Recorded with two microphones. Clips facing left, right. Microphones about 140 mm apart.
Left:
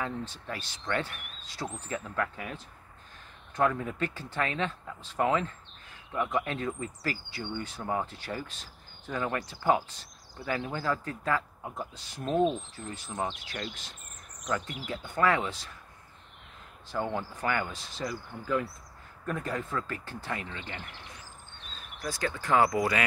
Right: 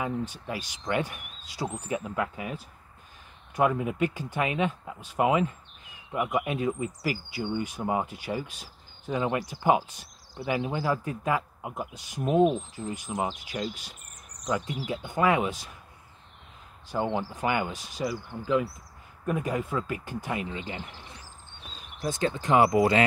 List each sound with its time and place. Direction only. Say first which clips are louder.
0.0 s speech: right 4 dB; 15° right (ahead or behind)
16.9 s speech: right 4 dB; 20° right (ahead or behind)
22.0 s speech: right 5 dB; 25° right (ahead or behind)